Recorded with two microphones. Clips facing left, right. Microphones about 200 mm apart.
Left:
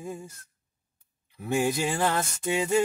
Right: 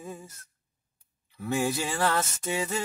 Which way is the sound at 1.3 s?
20° left (ahead or behind).